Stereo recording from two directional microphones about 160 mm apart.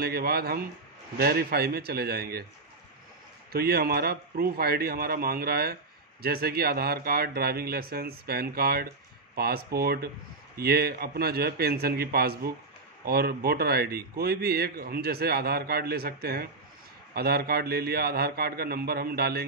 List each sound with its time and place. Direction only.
0.0 s speech: 75° right (ahead or behind)
3.5 s speech: 75° right (ahead or behind)